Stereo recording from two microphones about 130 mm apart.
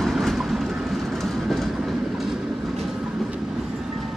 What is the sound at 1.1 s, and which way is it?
Train, centre (ahead or behind).